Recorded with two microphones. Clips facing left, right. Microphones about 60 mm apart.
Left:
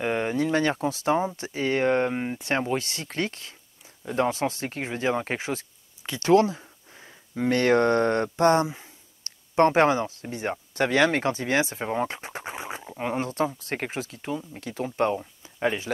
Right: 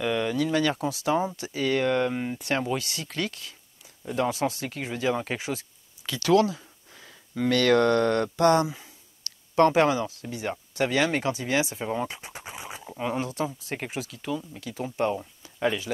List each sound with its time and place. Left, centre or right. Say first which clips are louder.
0.0 s speech: left 1 dB; left
15.1 s speech: left 1 dB; left